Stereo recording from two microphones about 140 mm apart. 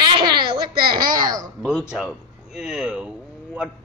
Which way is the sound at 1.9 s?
5° right (ahead or behind).